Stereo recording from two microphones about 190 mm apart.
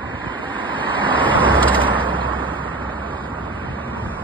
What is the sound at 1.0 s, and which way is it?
Vehicle, 10° left (ahead or behind).